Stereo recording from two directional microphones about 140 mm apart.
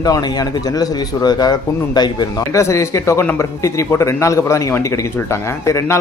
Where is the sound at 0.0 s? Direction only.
25° left (ahead or behind).